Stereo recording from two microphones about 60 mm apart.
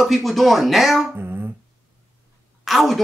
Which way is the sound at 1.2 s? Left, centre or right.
Right.